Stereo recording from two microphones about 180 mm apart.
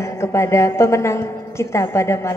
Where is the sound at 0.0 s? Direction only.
15° left (ahead or behind).